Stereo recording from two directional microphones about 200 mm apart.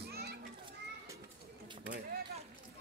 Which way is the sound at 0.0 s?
55° right (ahead or behind).